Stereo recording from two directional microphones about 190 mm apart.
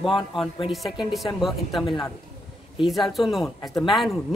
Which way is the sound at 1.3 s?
Centre (ahead or behind).